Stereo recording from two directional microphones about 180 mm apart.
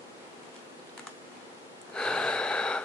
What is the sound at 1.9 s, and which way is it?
Snort, 5° left (ahead or behind).